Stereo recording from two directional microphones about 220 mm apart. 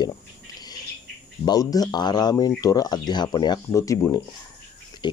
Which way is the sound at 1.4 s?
15° left (ahead or behind).